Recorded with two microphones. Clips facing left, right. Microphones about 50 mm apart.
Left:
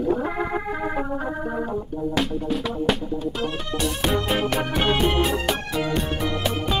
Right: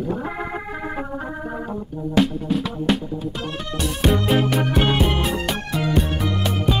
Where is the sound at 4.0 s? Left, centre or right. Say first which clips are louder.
Right 5 dB; centre.